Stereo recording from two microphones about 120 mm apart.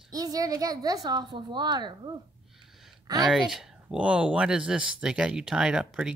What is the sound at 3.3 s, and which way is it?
Speech, 5° right (ahead or behind).